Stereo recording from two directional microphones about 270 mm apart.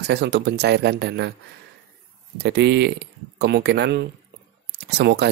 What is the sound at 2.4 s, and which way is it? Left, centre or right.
Speech, right.